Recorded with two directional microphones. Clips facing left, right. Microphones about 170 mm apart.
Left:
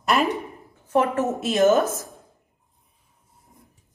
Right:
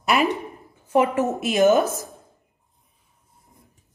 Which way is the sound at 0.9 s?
10° right (ahead or behind).